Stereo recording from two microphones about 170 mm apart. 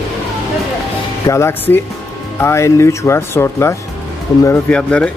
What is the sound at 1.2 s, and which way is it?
Speech, 15° left (ahead or behind).